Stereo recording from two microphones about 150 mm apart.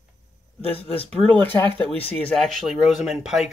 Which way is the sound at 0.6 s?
40° left (ahead or behind).